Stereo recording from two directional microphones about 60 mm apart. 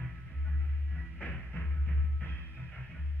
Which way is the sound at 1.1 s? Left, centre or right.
Left.